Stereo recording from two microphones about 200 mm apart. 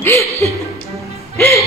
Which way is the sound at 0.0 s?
15° left (ahead or behind).